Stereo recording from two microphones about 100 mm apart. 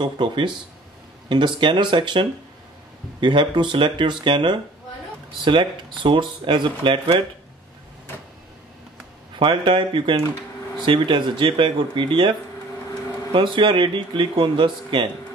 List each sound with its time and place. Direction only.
0.0 s speech: 50° right (ahead or behind)
9.4 s speech: 55° right (ahead or behind)